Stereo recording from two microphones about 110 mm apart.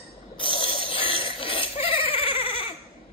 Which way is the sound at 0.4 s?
50° left (ahead or behind).